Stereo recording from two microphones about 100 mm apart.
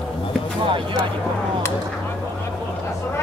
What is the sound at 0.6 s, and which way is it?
Speech, 55° right (ahead or behind).